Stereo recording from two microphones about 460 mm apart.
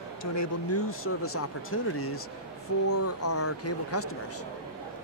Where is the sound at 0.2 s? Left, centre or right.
Left.